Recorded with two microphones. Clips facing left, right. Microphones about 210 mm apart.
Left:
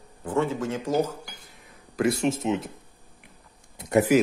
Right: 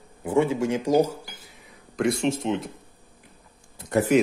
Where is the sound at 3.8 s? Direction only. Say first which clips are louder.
Left 1 dB; 15° left (ahead or behind).